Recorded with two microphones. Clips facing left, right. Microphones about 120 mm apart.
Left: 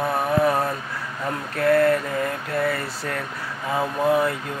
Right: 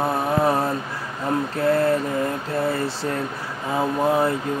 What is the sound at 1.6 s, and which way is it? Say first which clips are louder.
Mantra: left 3 dB; 25° right (ahead or behind).